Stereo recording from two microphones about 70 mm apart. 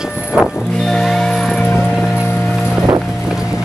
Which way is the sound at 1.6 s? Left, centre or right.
Left.